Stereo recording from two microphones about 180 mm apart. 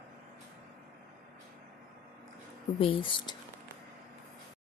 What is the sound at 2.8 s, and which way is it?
Speech, 30° left (ahead or behind).